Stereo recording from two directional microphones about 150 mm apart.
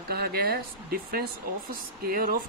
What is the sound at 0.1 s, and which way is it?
Speech, 90° right.